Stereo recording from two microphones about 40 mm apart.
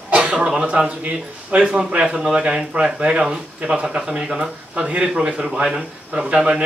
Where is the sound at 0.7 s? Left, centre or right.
Right.